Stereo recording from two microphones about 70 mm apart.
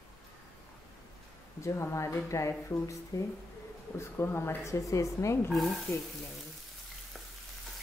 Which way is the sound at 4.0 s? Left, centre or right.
Left.